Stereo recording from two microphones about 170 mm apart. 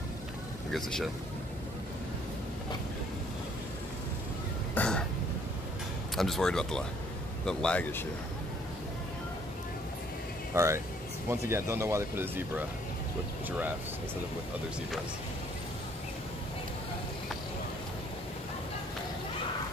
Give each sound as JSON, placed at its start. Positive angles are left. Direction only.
{"t": 0.7, "sound": "speech", "side_deg": 5}
{"t": 4.7, "sound": "a sound", "side_deg": 5}
{"t": 6.1, "sound": "speech", "side_deg": 0}
{"t": 10.5, "sound": "speech", "side_deg": -15}